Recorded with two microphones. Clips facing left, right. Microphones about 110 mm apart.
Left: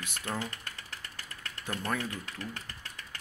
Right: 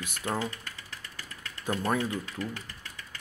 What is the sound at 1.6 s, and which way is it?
Speech, 20° right (ahead or behind).